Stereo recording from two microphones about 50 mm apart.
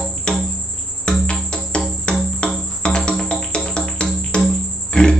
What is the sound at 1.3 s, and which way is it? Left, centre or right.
Music, centre.